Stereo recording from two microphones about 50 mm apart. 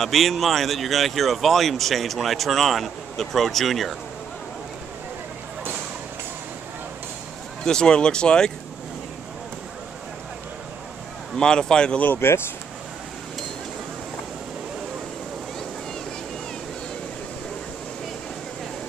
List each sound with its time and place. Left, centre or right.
0.0 s speech: centre
7.6 s speech: centre
11.3 s speech: centre
12.2 s speech: left